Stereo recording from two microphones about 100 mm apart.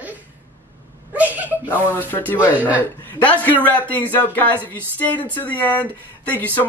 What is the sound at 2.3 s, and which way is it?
Speech, 15° right (ahead or behind).